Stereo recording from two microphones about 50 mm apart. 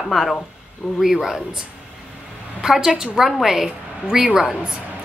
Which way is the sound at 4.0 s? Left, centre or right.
Centre.